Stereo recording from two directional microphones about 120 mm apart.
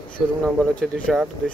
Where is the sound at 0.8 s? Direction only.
10° left (ahead or behind).